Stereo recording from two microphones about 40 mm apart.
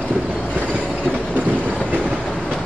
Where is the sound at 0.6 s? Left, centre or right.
Right.